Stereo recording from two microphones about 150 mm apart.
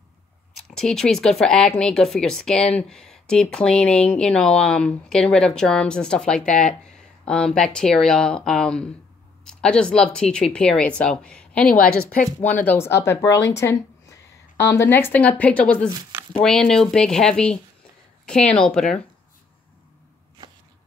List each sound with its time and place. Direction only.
0.7 s speech: 5° left (ahead or behind)
12.6 s speech: 15° left (ahead or behind)